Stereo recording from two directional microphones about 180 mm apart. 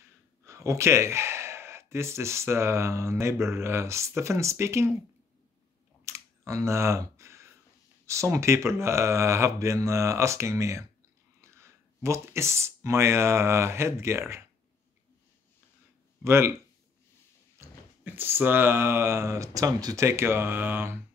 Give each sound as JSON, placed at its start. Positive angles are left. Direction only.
{"t": 0.5, "sound": "speech", "side_deg": -15}
{"t": 6.0, "sound": "computer keyboard", "side_deg": -15}
{"t": 8.1, "sound": "speech", "side_deg": -15}
{"t": 16.3, "sound": "speech", "side_deg": -15}